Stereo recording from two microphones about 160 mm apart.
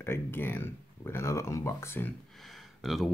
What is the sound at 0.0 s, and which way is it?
Speech, 15° left (ahead or behind).